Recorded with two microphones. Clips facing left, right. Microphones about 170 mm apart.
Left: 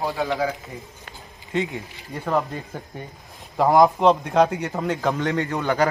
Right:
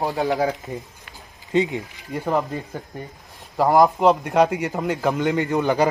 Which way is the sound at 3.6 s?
Centre (ahead or behind).